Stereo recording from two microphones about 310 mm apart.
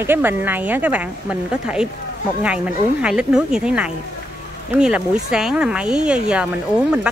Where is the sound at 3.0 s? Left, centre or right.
Centre.